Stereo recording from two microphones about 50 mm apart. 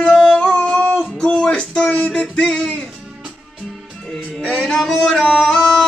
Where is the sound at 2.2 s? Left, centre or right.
Centre.